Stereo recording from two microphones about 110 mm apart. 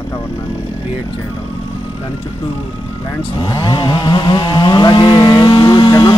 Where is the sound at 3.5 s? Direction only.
40° left (ahead or behind).